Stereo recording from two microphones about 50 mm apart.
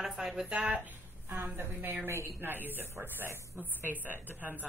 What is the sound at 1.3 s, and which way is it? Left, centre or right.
Speech, right.